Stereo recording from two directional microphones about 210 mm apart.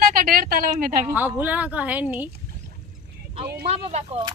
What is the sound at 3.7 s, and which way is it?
Speech, 30° right (ahead or behind).